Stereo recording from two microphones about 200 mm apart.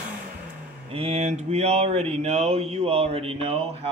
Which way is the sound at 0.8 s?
30° right (ahead or behind).